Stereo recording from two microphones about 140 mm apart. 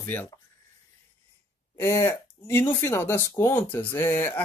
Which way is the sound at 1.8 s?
20° left (ahead or behind).